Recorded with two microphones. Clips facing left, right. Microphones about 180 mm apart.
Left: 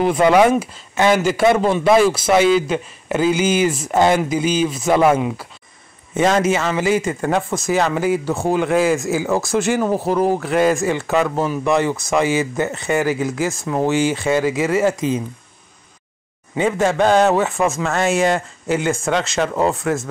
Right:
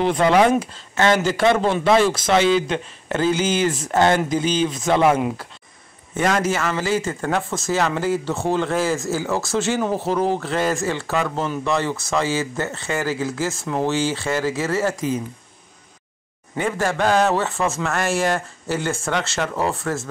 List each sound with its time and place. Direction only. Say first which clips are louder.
0.0 s speech: left 3 dB; 10° left (ahead or behind)
6.1 s speech: left 4 dB; 20° left (ahead or behind)
16.5 s speech: left 5 dB; 20° left (ahead or behind)